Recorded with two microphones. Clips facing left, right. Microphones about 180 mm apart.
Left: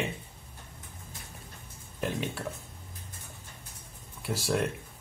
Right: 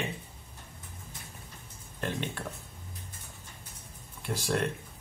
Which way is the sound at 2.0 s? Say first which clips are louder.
Left 2 dB; 5° left (ahead or behind).